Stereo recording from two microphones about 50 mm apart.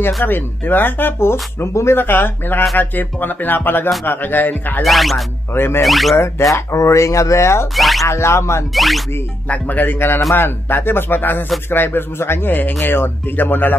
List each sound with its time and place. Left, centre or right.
0.0 s speech: left
2.0 s speech: left
4.8 s speech: centre
5.5 s speech: left
5.9 s speech: centre
6.1 s speech: left
7.7 s speech: centre
8.0 s speech: left
8.7 s speech: centre
9.5 s speech: left